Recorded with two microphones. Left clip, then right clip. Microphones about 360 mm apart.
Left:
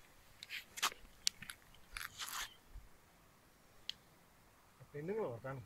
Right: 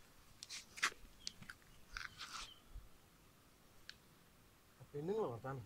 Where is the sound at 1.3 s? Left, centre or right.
Left.